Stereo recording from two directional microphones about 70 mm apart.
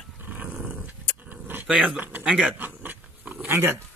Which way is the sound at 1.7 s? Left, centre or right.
Centre.